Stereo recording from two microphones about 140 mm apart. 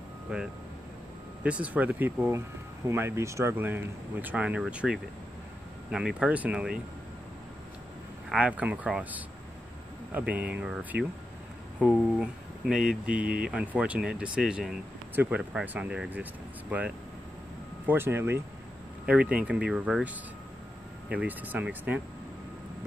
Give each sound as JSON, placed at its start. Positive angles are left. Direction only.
{"t": 0.3, "sound": "speech", "side_deg": -5}
{"t": 8.3, "sound": "speech", "side_deg": -10}
{"t": 17.8, "sound": "speech", "side_deg": -15}
{"t": 21.1, "sound": "speech", "side_deg": -10}